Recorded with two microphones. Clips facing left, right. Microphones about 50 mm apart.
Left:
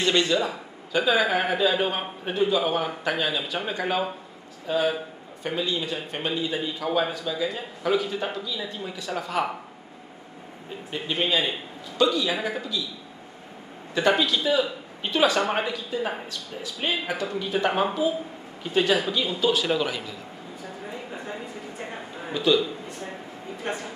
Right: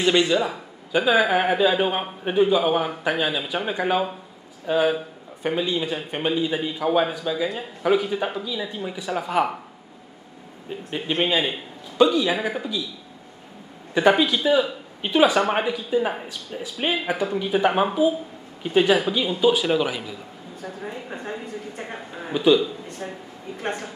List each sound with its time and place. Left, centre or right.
0.0 s a man's voice: centre
10.9 s a man's voice: right
13.9 s a man's voice: centre
20.9 s a sound: right
22.3 s a man's voice: centre